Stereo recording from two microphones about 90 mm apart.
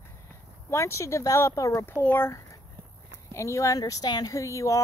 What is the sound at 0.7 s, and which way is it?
Speech, 30° left (ahead or behind).